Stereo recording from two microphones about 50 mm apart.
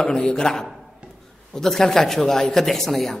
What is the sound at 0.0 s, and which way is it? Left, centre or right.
A man's voice, centre.